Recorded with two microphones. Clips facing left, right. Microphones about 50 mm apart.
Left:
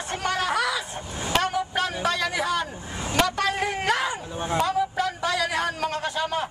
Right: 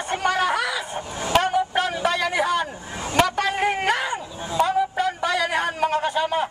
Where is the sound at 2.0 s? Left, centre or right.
Centre.